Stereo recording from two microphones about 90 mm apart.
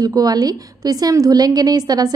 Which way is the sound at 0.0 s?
45° right (ahead or behind).